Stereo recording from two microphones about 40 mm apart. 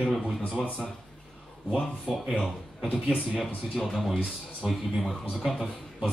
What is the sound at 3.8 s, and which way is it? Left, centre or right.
Speech, centre.